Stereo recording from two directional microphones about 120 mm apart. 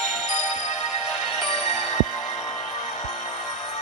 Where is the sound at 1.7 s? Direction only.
75° left (ahead or behind).